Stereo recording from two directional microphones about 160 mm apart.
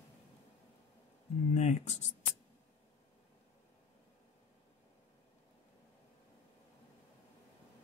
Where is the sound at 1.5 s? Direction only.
45° left (ahead or behind).